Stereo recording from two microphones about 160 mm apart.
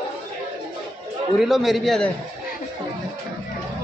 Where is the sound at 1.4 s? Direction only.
Centre (ahead or behind).